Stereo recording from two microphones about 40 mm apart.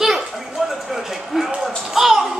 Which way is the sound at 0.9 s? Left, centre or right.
Centre.